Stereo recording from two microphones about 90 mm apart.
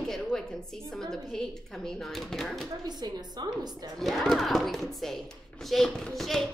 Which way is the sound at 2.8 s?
50° right (ahead or behind).